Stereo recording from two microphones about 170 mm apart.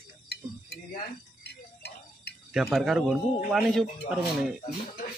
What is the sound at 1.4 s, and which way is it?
Music, 75° left (ahead or behind).